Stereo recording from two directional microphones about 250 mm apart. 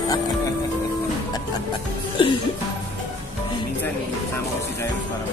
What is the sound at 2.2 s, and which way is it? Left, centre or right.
Speech, left.